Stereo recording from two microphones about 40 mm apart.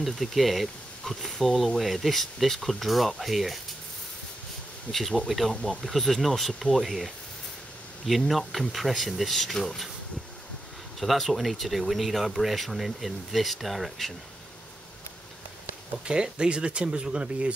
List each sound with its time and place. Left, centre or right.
0.0 s speech: centre
5.3 s speech: centre
8.3 s speech: centre
11.0 s speech: centre
16.1 s speech: right